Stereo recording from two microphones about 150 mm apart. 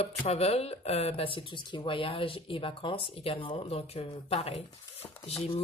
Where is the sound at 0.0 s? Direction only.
45° left (ahead or behind).